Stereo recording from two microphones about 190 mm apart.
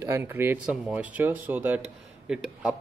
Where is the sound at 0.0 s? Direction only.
15° right (ahead or behind).